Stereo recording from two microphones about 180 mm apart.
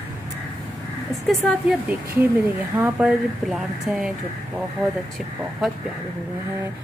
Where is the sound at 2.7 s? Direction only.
5° right (ahead or behind).